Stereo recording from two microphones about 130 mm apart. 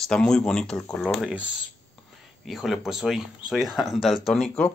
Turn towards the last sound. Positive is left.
turn(degrees=5)  # may be behind; listen again after turning